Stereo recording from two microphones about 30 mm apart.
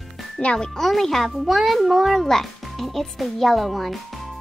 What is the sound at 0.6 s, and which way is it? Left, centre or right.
Speech, centre.